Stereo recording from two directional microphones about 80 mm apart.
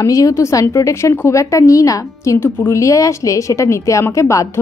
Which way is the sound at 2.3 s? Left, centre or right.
Left.